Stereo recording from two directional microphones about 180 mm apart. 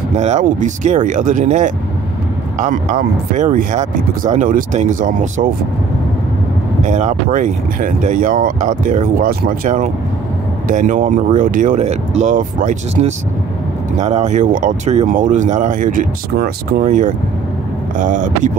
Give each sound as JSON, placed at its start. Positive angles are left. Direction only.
{"t": 0.2, "sound": "speech", "side_deg": -40}
{"t": 6.8, "sound": "speech", "side_deg": -45}